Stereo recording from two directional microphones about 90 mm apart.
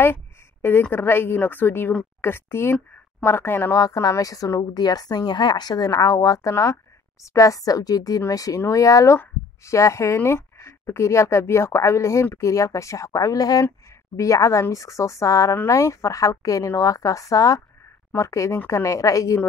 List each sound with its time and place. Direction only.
0.0 s a sound: 25° left (ahead or behind)
0.8 s a woman's voice: 25° left (ahead or behind)
3.7 s a woman's voice: 40° left (ahead or behind)